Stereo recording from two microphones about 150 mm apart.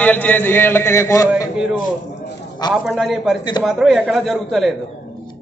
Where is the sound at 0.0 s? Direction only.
10° left (ahead or behind).